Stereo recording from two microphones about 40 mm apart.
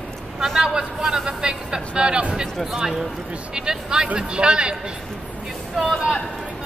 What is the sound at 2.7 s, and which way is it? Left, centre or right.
A man's voice, centre.